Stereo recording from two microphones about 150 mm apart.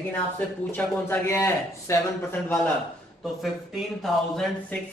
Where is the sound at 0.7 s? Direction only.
15° left (ahead or behind).